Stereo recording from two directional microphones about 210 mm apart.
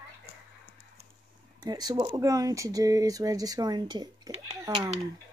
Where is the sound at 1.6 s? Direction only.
20° right (ahead or behind).